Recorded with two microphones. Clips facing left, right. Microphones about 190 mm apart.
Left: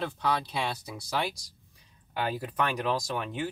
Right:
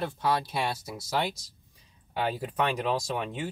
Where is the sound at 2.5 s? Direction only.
10° right (ahead or behind).